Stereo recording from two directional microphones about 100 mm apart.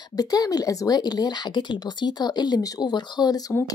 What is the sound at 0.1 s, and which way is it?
Speech, 40° left (ahead or behind).